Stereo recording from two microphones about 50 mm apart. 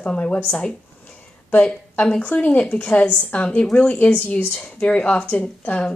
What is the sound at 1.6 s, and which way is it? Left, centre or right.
Speech, left.